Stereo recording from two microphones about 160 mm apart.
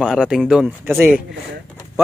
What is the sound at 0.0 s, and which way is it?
Speech, 5° right (ahead or behind).